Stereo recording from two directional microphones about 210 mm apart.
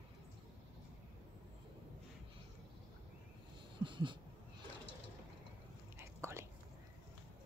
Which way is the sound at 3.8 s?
20° right (ahead or behind).